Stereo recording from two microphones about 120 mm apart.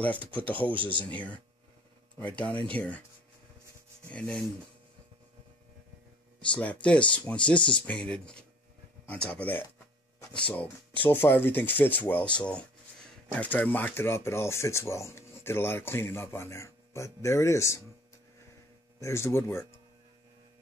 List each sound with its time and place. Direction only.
0.0 s speech: 10° left (ahead or behind)
0.7 s speech: 45° right (ahead or behind)
2.3 s speech: 10° left (ahead or behind)
4.1 s speech: 10° left (ahead or behind)
6.5 s speech: 10° left (ahead or behind)
18.9 s speech: 25° left (ahead or behind)